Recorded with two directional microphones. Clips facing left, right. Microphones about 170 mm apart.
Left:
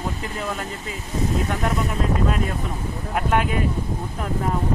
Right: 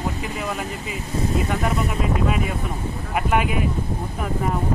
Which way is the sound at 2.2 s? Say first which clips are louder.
Right 1 dB; 5° right (ahead or behind).